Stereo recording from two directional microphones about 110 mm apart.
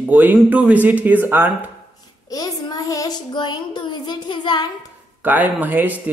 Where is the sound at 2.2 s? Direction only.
35° left (ahead or behind).